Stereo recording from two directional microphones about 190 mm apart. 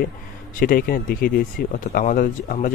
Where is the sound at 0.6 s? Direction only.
45° left (ahead or behind).